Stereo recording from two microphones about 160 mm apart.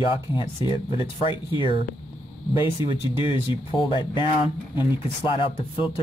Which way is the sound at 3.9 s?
30° left (ahead or behind).